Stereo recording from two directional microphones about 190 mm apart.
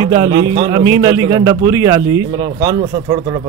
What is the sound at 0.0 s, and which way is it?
A man's voice, 20° right (ahead or behind).